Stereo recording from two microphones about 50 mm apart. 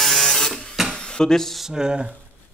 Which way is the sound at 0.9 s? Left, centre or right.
Centre.